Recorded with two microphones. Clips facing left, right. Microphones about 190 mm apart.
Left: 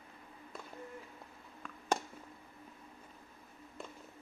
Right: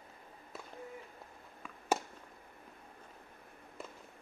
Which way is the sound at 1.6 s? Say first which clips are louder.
Left 1 dB; 5° right (ahead or behind).